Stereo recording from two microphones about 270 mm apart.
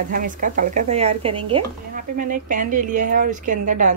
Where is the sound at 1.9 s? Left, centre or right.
Right.